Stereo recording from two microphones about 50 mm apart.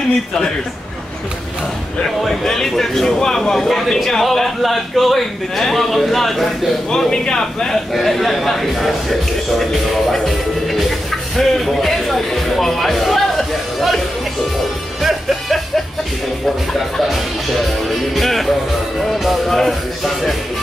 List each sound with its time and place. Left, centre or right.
2.2 s a man's voice: centre
6.9 s a man's voice: centre
15.0 s music: centre
16.9 s music: centre
18.1 s a man's voice: centre